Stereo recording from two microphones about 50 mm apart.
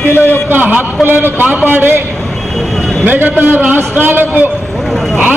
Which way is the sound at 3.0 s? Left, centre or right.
Right.